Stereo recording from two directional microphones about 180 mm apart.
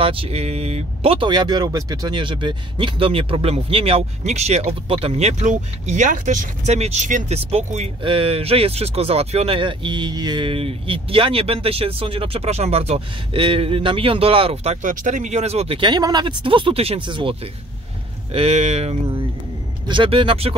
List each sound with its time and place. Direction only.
0.0 s speech: 30° right (ahead or behind)